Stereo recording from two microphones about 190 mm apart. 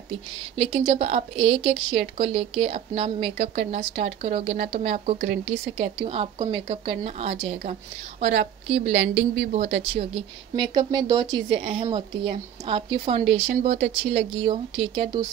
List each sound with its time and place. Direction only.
0.1 s speech: 30° right (ahead or behind)
8.9 s a woman's voice: 60° right (ahead or behind)
9.4 s speech: 35° right (ahead or behind)